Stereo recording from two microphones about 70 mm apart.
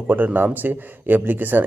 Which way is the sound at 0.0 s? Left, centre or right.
Right.